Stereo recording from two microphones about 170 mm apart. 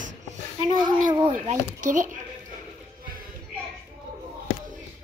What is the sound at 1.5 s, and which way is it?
Speech, 50° right (ahead or behind).